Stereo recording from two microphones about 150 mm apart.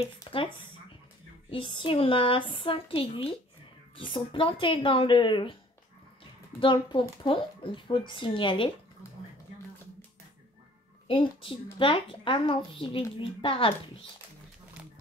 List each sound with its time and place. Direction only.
0.3 s speech: 35° left (ahead or behind)
1.5 s speech: 35° left (ahead or behind)
6.6 s speech: 35° left (ahead or behind)
11.1 s speech: 35° left (ahead or behind)